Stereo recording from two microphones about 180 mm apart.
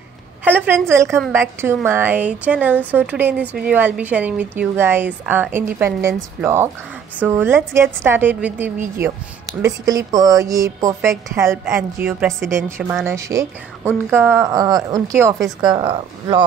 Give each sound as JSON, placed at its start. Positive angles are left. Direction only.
{"t": 0.4, "sound": "a woman's voice", "side_deg": -10}